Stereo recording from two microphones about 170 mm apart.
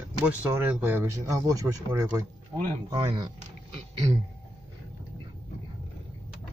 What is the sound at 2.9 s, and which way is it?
Speech, 30° right (ahead or behind).